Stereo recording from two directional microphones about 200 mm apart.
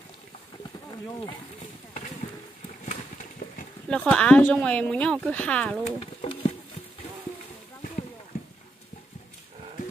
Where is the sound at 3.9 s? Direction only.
5° left (ahead or behind).